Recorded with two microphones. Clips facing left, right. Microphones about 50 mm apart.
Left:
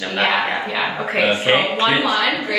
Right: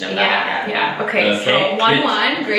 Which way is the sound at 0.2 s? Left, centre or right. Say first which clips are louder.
Right 1 dB; right.